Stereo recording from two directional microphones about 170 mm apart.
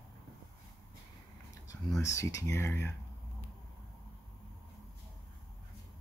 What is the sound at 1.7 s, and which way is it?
Speech, 20° left (ahead or behind).